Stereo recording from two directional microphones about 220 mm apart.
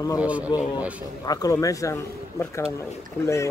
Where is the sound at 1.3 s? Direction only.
15° left (ahead or behind).